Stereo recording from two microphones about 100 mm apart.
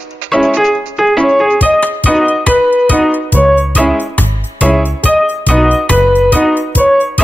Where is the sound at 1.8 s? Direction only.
15° left (ahead or behind).